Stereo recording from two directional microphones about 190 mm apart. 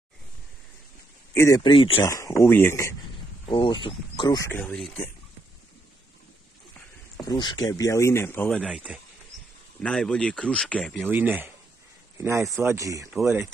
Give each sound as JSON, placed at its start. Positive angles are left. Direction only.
{"t": 1.3, "sound": "speech", "side_deg": 15}
{"t": 1.6, "sound": "speech", "side_deg": 25}
{"t": 2.1, "sound": "speech", "side_deg": 15}
{"t": 3.4, "sound": "speech", "side_deg": 25}
{"t": 4.5, "sound": "speech", "side_deg": 10}
{"t": 7.2, "sound": "speech", "side_deg": 20}
{"t": 8.6, "sound": "speech", "side_deg": -5}
{"t": 11.1, "sound": "speech", "side_deg": -10}
{"t": 12.4, "sound": "speech", "side_deg": 0}
{"t": 12.6, "sound": "speech", "side_deg": -15}